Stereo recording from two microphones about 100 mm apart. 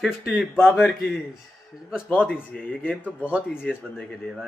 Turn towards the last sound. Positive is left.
turn(degrees=10)  # may be behind; listen again after turning